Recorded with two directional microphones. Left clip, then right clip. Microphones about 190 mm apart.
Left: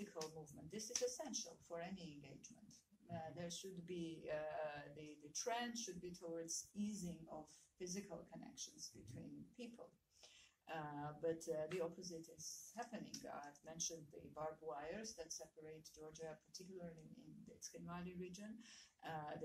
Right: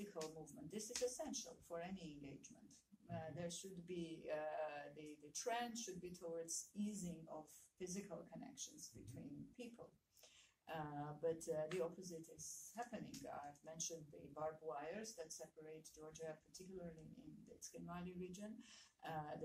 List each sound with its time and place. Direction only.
0.2 s a sound: 10° left (ahead or behind)
3.1 s speech: centre (ahead or behind)
10.7 s speech: centre (ahead or behind)